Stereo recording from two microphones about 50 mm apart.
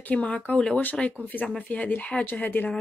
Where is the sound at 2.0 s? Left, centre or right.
Left.